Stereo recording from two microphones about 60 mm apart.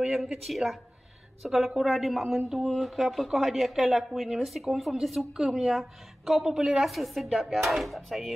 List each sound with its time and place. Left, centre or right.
0.0 s speech: centre